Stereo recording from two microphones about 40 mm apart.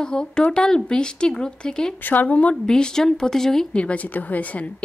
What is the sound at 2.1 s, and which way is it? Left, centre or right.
Speech, left.